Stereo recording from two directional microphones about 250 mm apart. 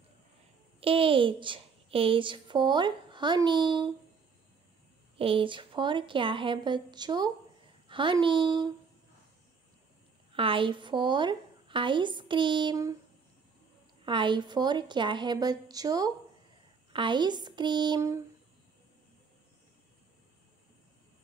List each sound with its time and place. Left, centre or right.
0.7 s a woman's voice: right
5.1 s a woman's voice: right
10.3 s a woman's voice: right
14.0 s a woman's voice: centre